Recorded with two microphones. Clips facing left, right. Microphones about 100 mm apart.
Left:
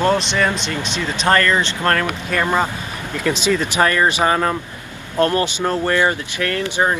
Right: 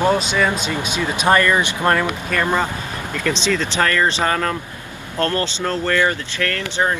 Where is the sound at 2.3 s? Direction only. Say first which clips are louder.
Left 2 dB; 10° left (ahead or behind).